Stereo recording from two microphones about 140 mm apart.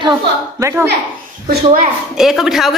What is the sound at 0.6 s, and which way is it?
Speech, 20° right (ahead or behind).